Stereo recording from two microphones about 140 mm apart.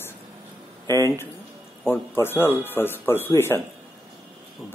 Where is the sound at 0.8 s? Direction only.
20° left (ahead or behind).